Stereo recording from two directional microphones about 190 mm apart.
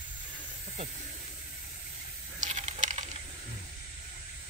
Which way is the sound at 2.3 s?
40° right (ahead or behind).